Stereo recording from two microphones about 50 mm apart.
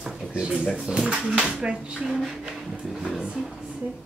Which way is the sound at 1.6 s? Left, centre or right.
Centre.